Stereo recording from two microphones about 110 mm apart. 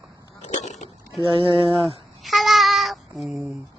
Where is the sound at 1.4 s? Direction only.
50° right (ahead or behind).